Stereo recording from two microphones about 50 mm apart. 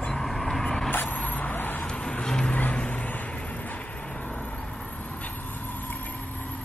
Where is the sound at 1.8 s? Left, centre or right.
Left.